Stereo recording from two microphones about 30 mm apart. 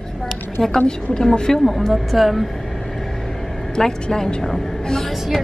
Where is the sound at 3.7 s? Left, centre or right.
Left.